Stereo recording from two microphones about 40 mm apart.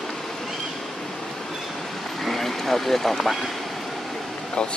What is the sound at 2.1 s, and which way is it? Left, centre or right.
Vehicle, centre.